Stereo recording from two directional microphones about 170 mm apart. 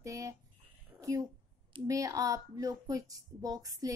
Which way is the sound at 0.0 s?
20° right (ahead or behind).